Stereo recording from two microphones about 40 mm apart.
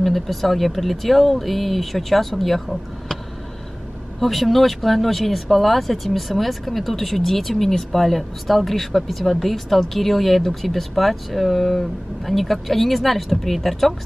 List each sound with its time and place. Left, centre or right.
0.0 s speech: centre
4.2 s speech: centre